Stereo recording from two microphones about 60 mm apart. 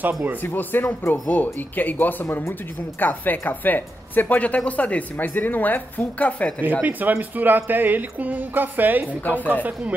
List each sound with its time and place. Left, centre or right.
0.4 s a woman's voice: left
6.8 s speech: right
9.2 s a woman's voice: left
9.5 s speech: right